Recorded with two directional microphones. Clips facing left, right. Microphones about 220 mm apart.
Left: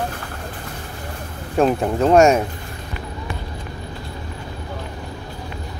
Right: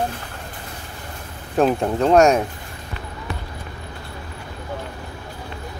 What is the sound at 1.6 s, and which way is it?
Speech, centre (ahead or behind).